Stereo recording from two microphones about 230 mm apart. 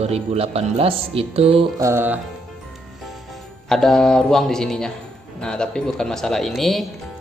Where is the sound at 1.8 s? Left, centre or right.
Centre.